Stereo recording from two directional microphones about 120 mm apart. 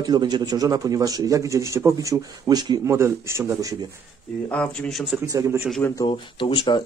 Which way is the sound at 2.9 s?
20° right (ahead or behind).